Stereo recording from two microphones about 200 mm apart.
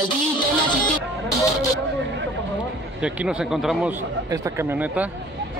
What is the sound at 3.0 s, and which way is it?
A man's voice, 5° right (ahead or behind).